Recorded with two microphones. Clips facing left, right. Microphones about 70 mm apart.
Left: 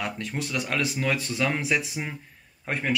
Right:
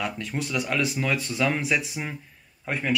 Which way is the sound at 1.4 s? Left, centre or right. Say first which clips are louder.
Right 3 dB; left.